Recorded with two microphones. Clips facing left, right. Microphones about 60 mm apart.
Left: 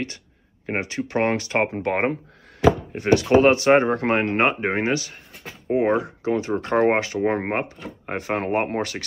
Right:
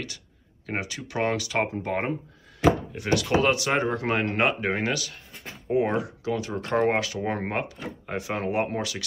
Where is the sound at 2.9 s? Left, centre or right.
Left.